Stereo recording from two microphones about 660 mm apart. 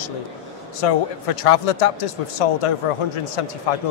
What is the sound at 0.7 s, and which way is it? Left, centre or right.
Speech, left.